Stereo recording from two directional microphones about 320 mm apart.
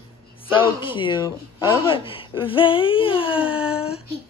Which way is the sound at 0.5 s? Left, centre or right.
Centre.